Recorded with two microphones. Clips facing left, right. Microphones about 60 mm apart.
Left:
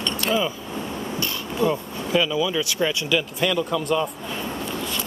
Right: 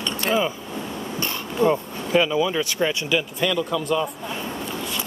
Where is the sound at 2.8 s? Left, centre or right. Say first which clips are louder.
Left 1 dB; centre.